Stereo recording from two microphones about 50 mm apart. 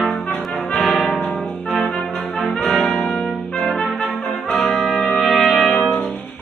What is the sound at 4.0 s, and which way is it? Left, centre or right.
Brass instrument, left.